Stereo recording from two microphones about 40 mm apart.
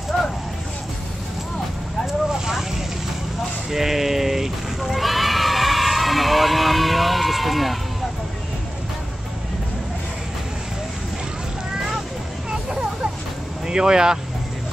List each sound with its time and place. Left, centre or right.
2.3 s vehicle: centre
3.7 s neigh: centre
12.4 s vehicle: right
13.7 s speech: centre